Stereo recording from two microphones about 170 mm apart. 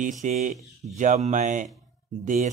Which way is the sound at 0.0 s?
45° right (ahead or behind).